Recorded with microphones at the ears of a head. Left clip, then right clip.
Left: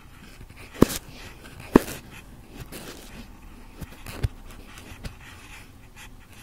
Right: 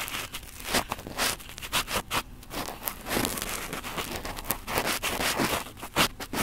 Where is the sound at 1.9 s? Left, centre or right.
Right.